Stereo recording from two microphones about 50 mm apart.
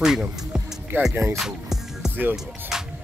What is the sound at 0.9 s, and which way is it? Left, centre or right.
Speech, right.